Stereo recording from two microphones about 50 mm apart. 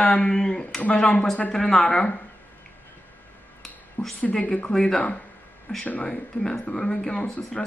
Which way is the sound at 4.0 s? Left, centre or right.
Left.